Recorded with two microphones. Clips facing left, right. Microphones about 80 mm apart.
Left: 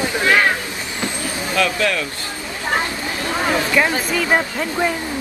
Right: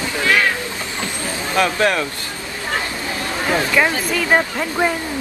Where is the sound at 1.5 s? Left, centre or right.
Right.